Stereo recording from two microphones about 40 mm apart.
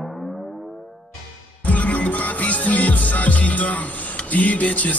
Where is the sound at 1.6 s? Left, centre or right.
Left.